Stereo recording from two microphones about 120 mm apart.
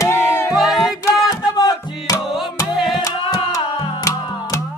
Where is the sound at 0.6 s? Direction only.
Centre (ahead or behind).